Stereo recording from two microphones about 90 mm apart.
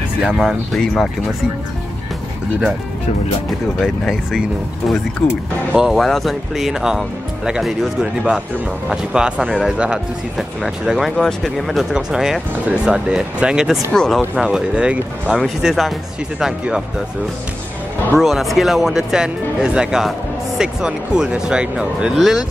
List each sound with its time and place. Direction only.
0.7 s speech: 5° left (ahead or behind)
3.4 s speech: 5° left (ahead or behind)
13.9 s speech: 5° left (ahead or behind)
14.4 s speech: 10° right (ahead or behind)
18.2 s speech: centre (ahead or behind)